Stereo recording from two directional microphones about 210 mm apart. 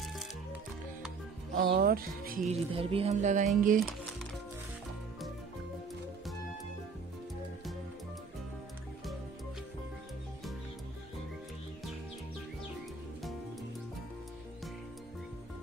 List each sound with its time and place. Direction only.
1.6 s speech: 45° right (ahead or behind)